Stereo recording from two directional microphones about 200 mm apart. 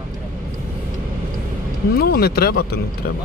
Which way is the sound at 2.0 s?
50° left (ahead or behind).